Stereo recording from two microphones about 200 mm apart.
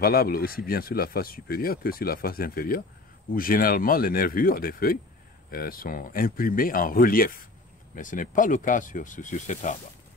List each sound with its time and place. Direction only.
0.0 s speech: 50° left (ahead or behind)